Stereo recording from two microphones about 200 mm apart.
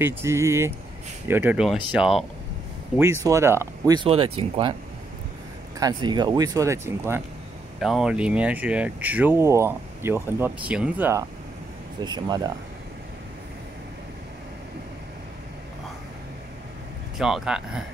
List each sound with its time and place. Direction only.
0.0 s speech: 15° right (ahead or behind)
3.3 s speech: 15° right (ahead or behind)
5.8 s speech: 20° right (ahead or behind)
12.0 s speech: 20° right (ahead or behind)
17.2 s speech: 5° right (ahead or behind)